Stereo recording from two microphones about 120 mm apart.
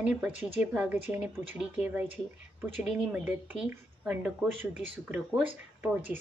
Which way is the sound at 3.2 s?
15° right (ahead or behind).